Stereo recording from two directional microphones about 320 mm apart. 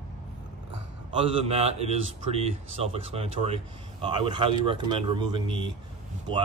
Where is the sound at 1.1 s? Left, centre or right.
Centre.